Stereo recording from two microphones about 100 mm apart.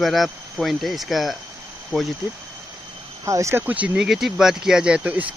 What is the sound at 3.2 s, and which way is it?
Speech, 30° right (ahead or behind).